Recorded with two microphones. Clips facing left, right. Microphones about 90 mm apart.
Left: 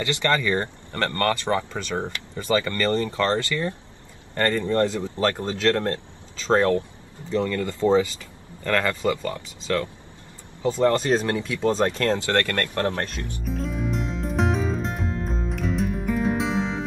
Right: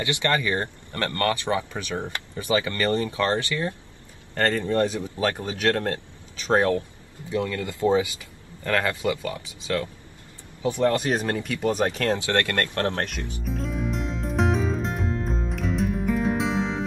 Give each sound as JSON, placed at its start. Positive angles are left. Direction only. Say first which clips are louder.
{"t": 0.0, "sound": "speech", "louder": "left 1 dB", "side_deg": -20}
{"t": 13.4, "sound": "music", "louder": "left 1 dB", "side_deg": 0}